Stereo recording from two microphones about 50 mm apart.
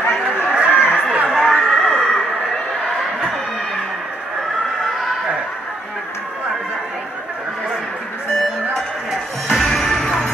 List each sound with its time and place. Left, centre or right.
0.5 s chatter: centre
1.1 s a sound: centre
9.5 s music: centre